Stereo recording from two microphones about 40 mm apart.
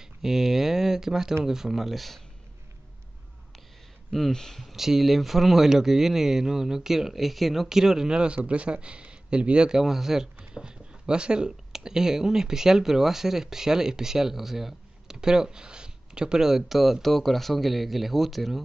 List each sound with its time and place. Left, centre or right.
0.0 s speech: centre
4.3 s speech: centre
4.7 s speech: centre; by 9.8 s right
9.8 s speech: centre
10.4 s a sound: right
11.7 s speech: centre